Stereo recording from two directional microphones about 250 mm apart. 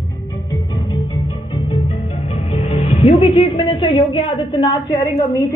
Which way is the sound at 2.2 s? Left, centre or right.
Left.